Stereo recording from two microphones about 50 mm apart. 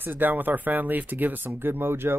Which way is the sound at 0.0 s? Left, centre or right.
Right.